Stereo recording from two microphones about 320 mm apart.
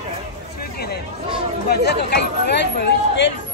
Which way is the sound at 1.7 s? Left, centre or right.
Left.